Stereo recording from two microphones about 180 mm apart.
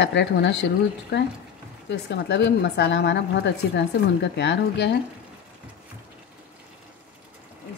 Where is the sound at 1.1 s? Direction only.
60° left (ahead or behind).